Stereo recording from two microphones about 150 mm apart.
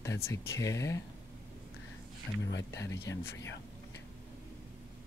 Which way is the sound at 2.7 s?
20° left (ahead or behind).